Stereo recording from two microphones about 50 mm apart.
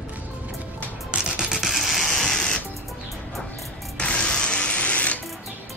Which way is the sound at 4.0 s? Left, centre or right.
Left.